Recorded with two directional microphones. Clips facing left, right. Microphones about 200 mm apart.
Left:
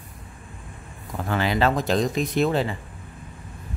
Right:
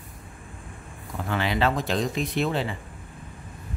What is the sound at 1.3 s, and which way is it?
Speech, 40° left (ahead or behind).